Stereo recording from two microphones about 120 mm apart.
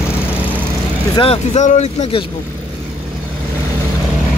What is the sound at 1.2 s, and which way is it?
Speech, 60° left (ahead or behind).